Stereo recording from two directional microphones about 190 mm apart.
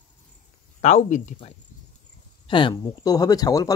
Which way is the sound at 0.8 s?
40° left (ahead or behind).